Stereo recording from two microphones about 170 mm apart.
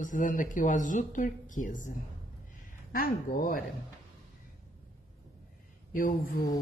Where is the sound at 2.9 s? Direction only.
55° left (ahead or behind).